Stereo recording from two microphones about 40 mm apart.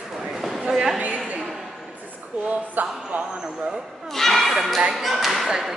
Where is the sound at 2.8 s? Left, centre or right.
Right.